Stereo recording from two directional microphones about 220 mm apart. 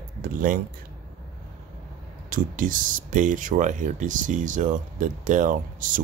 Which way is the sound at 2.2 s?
40° right (ahead or behind).